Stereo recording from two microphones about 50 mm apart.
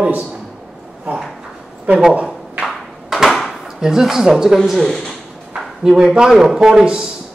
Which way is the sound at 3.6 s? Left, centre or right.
Centre.